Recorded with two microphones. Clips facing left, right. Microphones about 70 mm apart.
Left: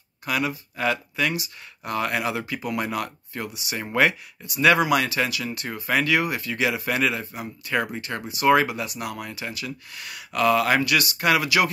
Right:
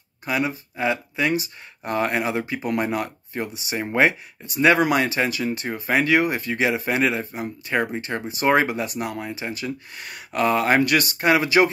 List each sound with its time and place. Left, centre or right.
0.3 s speech: right
11.1 s speech: right